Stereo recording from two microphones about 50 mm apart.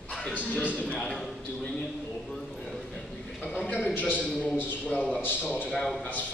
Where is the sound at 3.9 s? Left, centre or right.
Left.